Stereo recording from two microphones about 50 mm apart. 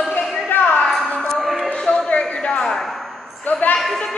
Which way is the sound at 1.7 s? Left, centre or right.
Centre.